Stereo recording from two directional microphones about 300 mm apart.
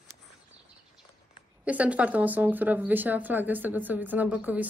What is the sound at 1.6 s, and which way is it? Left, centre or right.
A woman's voice, centre.